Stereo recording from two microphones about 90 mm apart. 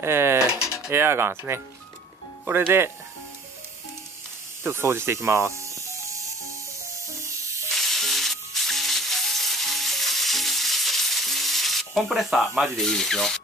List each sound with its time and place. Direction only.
0.0 s speech: 25° right (ahead or behind)
0.9 s a sound: 25° right (ahead or behind)
4.6 s speech: 30° right (ahead or behind)
7.2 s music: 35° right (ahead or behind)
7.7 s music: centre (ahead or behind)